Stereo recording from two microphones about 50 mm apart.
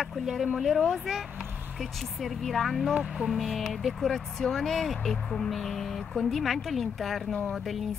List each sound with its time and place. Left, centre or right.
0.0 s speech: centre